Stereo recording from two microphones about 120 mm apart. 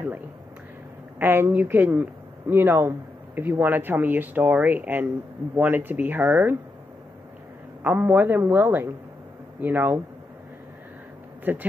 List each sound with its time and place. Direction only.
1.2 s speech: 20° right (ahead or behind)
7.8 s speech: 15° right (ahead or behind)
11.5 s speech: 15° right (ahead or behind)